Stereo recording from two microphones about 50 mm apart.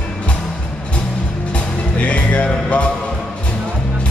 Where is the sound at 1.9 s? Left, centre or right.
Left.